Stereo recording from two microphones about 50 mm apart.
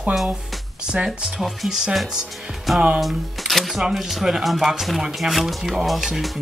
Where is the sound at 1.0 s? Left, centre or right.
Centre.